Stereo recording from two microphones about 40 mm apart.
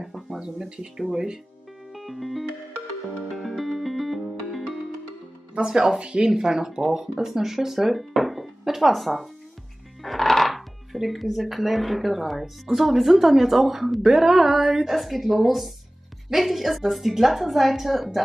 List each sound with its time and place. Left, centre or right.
0.4 s speech: centre
2.0 s music: centre
5.6 s speech: right; by 18.2 s centre